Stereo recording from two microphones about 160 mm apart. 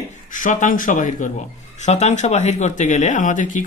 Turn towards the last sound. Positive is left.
turn(degrees=55)  # may be behind; listen again after turning